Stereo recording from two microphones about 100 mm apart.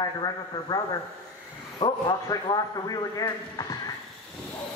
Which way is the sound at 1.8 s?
50° left (ahead or behind).